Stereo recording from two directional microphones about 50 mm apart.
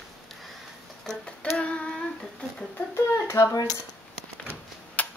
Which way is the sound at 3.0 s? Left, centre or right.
Left.